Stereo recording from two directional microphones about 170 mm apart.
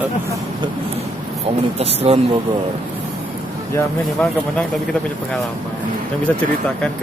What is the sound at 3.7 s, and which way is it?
Speech, 15° left (ahead or behind).